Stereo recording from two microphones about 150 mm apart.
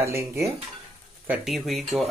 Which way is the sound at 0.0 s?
20° right (ahead or behind).